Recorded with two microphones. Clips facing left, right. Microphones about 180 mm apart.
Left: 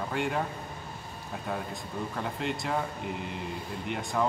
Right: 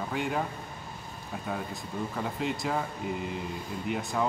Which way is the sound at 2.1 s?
Centre (ahead or behind).